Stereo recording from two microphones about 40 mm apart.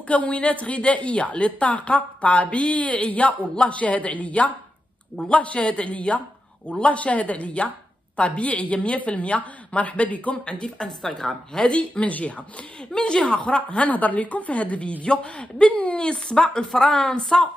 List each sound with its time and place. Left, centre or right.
0.1 s a woman's voice: left
11.0 s a woman's voice: centre
11.6 s a woman's voice: left
12.9 s speech: left
13.6 s a woman's voice: left
16.0 s speech: left